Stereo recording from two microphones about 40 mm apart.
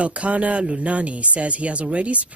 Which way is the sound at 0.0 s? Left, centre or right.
Right.